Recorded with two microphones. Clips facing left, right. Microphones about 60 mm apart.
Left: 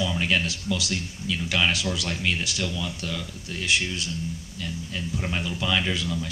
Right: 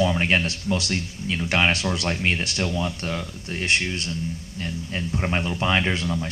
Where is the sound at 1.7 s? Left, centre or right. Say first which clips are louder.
Right 3 dB; right.